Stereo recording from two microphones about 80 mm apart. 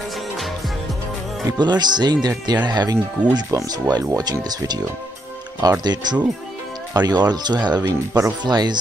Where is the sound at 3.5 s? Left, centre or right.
Right.